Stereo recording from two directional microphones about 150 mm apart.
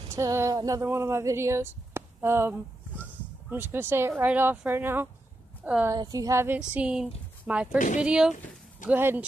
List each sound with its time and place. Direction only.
0.1 s a woman's voice: 20° right (ahead or behind)
5.9 s speech: 25° right (ahead or behind)